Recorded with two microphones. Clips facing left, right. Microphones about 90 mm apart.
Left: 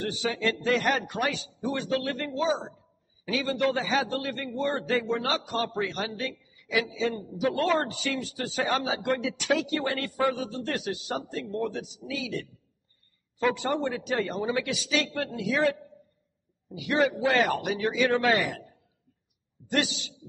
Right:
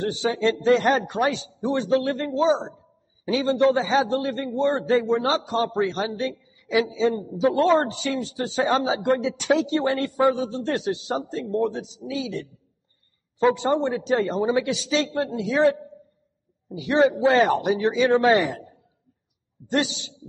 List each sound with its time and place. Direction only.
0.0 s a man's voice: 25° right (ahead or behind)